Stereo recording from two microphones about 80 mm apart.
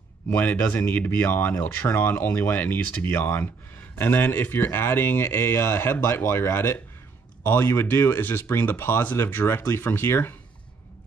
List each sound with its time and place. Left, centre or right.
0.3 s speech: left